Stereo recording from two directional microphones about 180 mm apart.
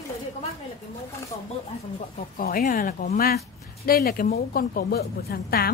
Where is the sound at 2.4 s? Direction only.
50° left (ahead or behind).